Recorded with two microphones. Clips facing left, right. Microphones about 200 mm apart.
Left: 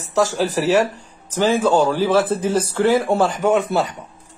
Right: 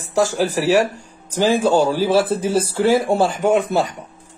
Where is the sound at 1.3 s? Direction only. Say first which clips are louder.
Right 1 dB; 10° right (ahead or behind).